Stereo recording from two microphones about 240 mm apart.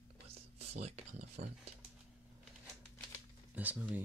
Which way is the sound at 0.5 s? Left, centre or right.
Right.